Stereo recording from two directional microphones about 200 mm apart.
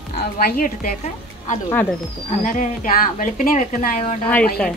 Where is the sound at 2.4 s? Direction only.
40° left (ahead or behind).